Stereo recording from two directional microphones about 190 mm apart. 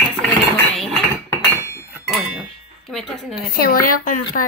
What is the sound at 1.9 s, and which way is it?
Chink, centre (ahead or behind).